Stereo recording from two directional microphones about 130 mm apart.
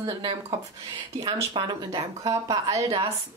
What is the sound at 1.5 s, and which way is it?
A woman's voice, 35° right (ahead or behind).